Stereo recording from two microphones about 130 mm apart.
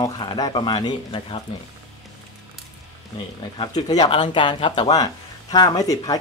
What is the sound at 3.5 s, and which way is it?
Speech, 30° left (ahead or behind).